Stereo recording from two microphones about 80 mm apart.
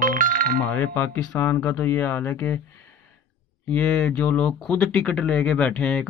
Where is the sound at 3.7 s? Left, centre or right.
Centre.